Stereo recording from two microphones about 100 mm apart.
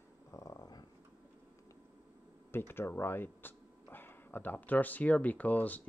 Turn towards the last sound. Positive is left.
turn(degrees=15)  # may be behind; listen again after turning